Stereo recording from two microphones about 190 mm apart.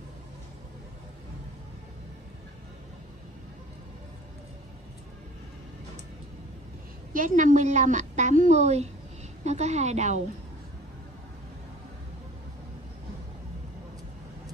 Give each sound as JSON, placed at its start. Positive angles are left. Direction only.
{"t": 7.1, "sound": "a woman's voice", "side_deg": -45}